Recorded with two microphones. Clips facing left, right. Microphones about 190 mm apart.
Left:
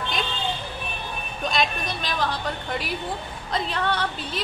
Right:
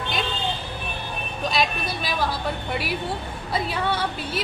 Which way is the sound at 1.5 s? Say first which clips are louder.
Even; 5° right (ahead or behind).